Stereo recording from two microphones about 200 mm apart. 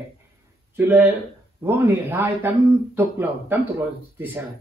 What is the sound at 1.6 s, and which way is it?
A man's voice, 10° right (ahead or behind).